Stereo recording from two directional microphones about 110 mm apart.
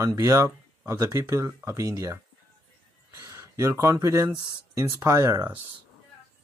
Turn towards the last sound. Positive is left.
turn(degrees=-30)  # may be behind; listen again after turning